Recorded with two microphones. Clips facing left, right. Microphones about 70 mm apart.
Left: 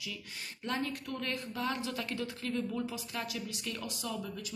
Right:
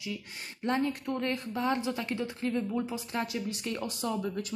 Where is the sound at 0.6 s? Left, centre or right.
Right.